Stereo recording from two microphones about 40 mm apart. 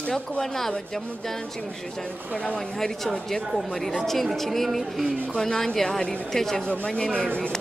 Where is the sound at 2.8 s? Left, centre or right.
Centre.